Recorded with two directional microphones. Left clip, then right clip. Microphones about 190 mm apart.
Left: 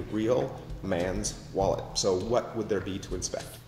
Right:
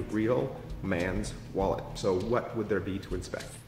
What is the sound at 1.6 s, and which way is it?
Speech, 15° right (ahead or behind).